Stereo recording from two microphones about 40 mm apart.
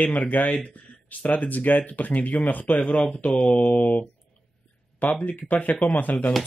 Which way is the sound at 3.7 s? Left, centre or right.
Left.